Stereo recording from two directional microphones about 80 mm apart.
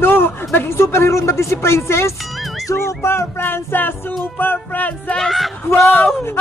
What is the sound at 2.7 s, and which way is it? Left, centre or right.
Speech, left.